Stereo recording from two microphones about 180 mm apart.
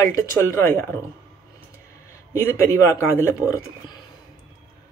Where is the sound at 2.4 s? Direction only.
15° left (ahead or behind).